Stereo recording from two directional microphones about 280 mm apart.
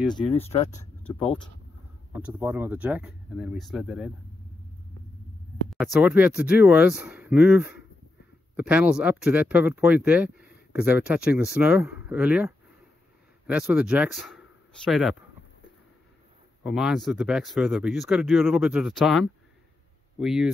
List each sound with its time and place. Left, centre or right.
0.1 s speech: centre
1.0 s speech: centre
2.1 s speech: centre
5.7 s speech: centre
16.6 s speech: centre